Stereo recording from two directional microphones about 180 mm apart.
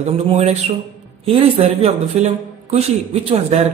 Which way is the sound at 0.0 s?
35° right (ahead or behind).